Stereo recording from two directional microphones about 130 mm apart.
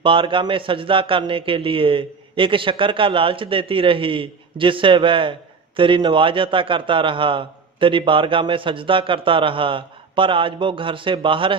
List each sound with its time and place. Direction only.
0.0 s a man's voice: 40° right (ahead or behind)